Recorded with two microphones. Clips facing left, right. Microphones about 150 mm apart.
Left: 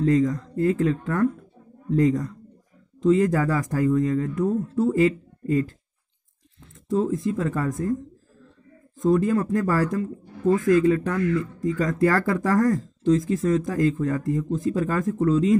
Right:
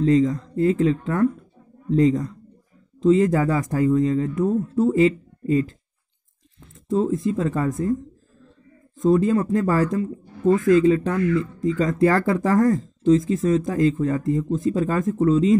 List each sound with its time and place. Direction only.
0.0 s speech: 20° right (ahead or behind)
6.9 s speech: 25° right (ahead or behind)
9.0 s speech: 20° right (ahead or behind)